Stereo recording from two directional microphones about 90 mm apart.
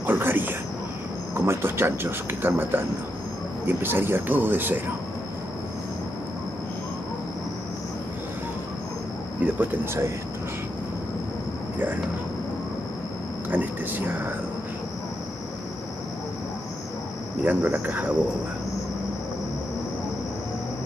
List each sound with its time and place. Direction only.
0.0 s speech: 25° right (ahead or behind)
9.4 s speech: 20° right (ahead or behind)
13.5 s speech: 20° right (ahead or behind)
17.4 s speech: 20° right (ahead or behind)